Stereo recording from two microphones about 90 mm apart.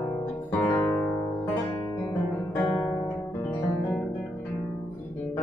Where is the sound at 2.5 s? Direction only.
20° left (ahead or behind).